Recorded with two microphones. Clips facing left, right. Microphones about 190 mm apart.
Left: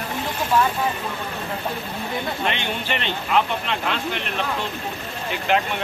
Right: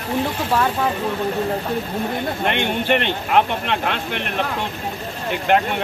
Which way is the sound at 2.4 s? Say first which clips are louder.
Right 6 dB; 55° right (ahead or behind).